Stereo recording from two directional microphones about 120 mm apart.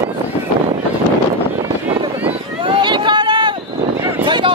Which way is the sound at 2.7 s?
40° right (ahead or behind).